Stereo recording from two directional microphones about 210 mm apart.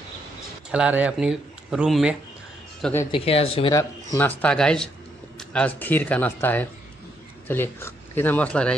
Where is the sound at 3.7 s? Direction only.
10° left (ahead or behind).